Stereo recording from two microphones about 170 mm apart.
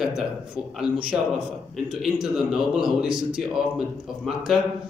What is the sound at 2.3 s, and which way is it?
Speech, 5° right (ahead or behind).